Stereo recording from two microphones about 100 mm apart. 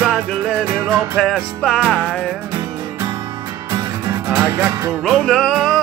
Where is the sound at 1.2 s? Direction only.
5° left (ahead or behind).